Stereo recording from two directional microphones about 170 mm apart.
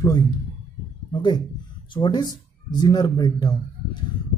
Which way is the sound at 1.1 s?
25° left (ahead or behind).